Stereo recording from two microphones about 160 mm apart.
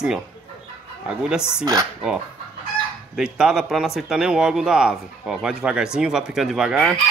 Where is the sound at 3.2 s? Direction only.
5° right (ahead or behind).